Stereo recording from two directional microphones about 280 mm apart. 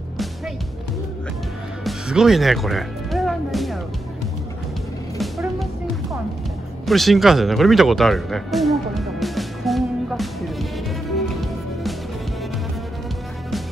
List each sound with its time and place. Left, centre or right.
1.9 s music: centre
6.9 s music: centre